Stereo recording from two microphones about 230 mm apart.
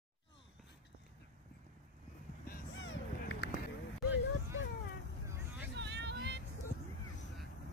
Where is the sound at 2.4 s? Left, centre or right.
Left.